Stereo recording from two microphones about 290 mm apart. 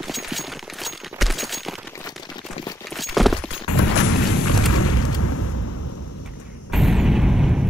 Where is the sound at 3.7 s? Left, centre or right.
Left.